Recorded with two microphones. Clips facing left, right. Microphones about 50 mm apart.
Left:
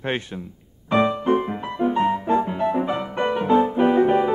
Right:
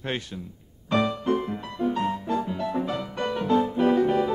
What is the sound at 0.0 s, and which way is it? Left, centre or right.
Music, left.